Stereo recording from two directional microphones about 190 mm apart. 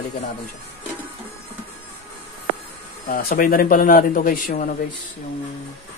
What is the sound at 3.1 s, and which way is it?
Speech, 50° left (ahead or behind).